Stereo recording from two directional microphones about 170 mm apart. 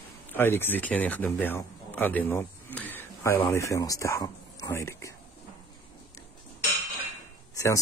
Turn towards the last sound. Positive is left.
turn(degrees=20)  # may be behind; listen again after turning